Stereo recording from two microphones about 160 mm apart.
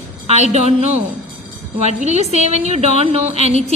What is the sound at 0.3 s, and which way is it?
A woman's voice, 45° right (ahead or behind).